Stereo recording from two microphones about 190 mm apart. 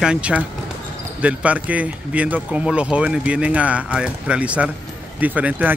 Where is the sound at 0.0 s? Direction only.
5° right (ahead or behind).